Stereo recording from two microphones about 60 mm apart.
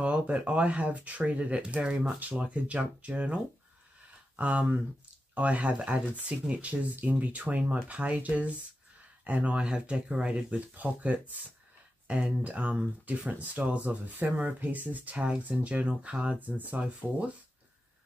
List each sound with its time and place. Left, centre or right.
0.0 s speech: right
4.4 s speech: right